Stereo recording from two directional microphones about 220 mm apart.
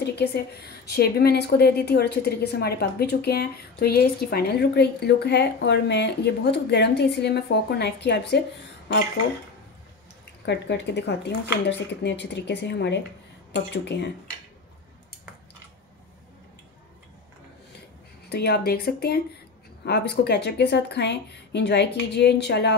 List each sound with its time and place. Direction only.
0.0 s a woman's voice: 50° left (ahead or behind)
10.4 s a woman's voice: 50° left (ahead or behind)
18.3 s a woman's voice: 45° left (ahead or behind)